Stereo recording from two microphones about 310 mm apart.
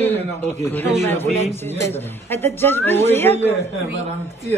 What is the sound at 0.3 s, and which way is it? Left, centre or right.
Speech, centre.